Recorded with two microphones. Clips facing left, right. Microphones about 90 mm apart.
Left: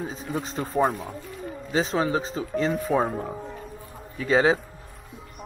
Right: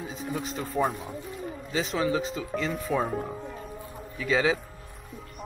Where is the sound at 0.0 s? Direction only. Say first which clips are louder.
Left 2 dB; 35° left (ahead or behind).